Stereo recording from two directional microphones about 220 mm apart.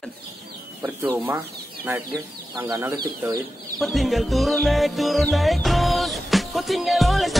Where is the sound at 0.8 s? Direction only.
10° right (ahead or behind).